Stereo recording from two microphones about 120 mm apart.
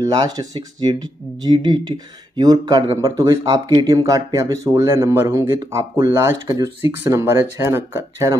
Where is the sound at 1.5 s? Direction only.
40° right (ahead or behind).